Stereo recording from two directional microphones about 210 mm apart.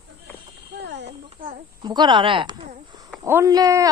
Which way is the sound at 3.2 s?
15° right (ahead or behind).